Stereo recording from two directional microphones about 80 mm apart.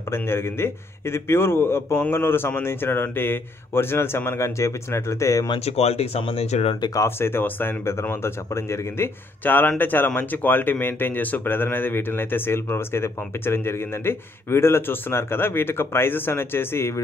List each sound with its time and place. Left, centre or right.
0.1 s a man's voice: left
7.0 s speech: left